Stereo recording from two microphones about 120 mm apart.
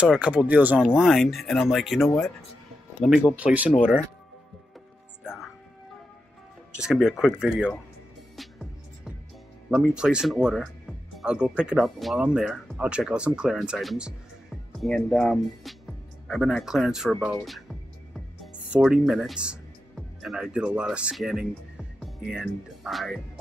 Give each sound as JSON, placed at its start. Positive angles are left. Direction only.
{"t": 0.0, "sound": "speech", "side_deg": -10}
{"t": 3.3, "sound": "speech", "side_deg": -10}
{"t": 5.2, "sound": "music", "side_deg": -5}
{"t": 6.7, "sound": "speech", "side_deg": -5}
{"t": 8.4, "sound": "music", "side_deg": 0}
{"t": 9.7, "sound": "speech", "side_deg": -5}